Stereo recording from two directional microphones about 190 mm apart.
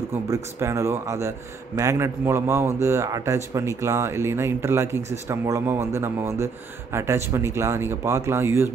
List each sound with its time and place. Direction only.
0.3 s a man's voice: 15° right (ahead or behind)